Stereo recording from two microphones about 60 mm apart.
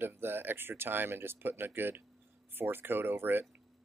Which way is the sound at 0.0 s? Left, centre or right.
Right.